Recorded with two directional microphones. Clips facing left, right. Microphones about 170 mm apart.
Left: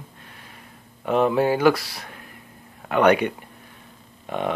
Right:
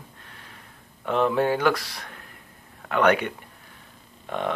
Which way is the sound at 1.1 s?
10° left (ahead or behind).